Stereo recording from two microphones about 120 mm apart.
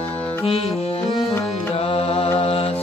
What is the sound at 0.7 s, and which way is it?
Music, 55° left (ahead or behind).